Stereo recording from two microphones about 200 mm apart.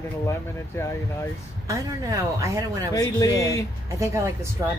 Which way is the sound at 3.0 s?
15° left (ahead or behind).